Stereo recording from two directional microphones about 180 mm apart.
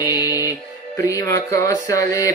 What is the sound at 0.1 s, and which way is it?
Music, 20° left (ahead or behind).